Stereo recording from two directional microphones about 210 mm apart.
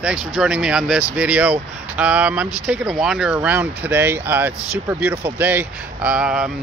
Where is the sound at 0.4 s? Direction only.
5° right (ahead or behind).